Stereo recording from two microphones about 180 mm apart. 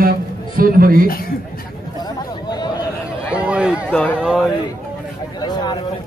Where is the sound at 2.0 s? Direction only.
20° left (ahead or behind).